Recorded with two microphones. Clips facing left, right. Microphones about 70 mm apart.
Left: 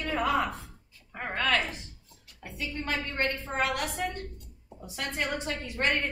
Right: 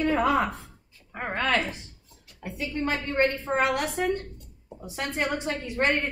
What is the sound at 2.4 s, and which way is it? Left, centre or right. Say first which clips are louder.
A woman's voice: right 6 dB; right.